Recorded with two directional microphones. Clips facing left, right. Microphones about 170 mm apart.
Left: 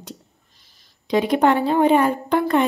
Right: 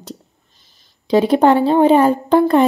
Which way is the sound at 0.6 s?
25° right (ahead or behind).